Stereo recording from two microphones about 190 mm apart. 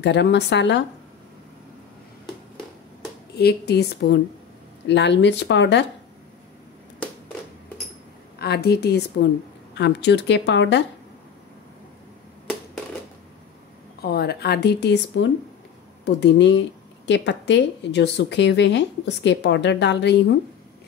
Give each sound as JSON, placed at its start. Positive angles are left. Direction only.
{"t": 0.0, "sound": "speech", "side_deg": 65}
{"t": 3.3, "sound": "speech", "side_deg": 60}
{"t": 8.4, "sound": "speech", "side_deg": 55}
{"t": 14.0, "sound": "speech", "side_deg": 55}